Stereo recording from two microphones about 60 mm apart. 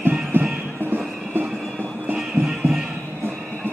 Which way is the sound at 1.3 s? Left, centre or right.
Right.